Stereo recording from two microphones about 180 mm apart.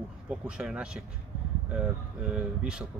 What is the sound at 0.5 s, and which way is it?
Speech, 5° right (ahead or behind).